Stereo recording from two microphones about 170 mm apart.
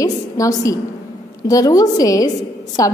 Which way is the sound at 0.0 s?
20° left (ahead or behind).